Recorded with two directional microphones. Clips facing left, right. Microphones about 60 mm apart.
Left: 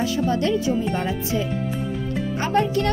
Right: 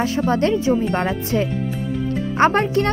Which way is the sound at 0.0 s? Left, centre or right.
Right.